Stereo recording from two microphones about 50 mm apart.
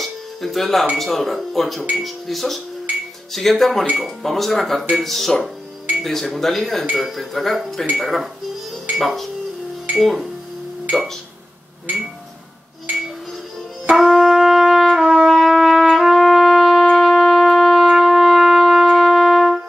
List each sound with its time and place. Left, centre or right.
0.0 s music: centre
0.9 s speech: centre
13.8 s brass instrument: centre
16.9 s shofar: centre